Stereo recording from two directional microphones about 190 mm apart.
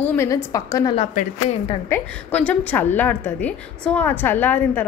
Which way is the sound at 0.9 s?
35° left (ahead or behind).